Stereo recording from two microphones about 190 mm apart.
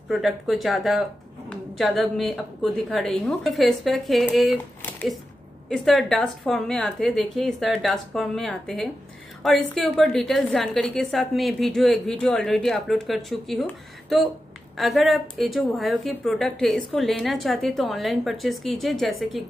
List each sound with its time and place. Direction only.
0.1 s a woman's voice: centre (ahead or behind)